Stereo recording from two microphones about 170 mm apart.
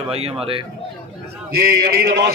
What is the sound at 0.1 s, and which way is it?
Speech, 35° right (ahead or behind).